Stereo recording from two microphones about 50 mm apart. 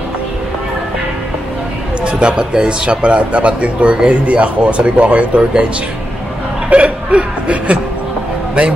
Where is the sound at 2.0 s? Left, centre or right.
Right.